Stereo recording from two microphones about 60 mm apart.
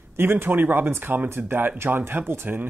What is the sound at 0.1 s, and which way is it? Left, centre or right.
Speech, right.